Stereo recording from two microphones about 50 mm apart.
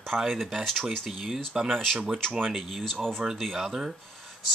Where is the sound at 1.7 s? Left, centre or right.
Centre.